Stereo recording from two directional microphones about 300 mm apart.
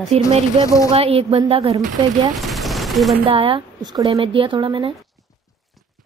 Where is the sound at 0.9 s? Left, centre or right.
Centre.